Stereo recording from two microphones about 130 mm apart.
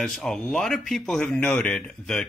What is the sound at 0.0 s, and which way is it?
Speech, 5° left (ahead or behind).